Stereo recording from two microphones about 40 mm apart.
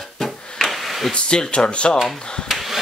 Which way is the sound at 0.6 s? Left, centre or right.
Centre.